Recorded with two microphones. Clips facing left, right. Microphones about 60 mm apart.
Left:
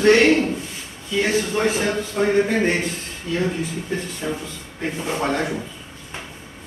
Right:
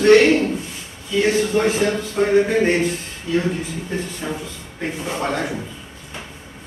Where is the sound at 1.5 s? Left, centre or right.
Right.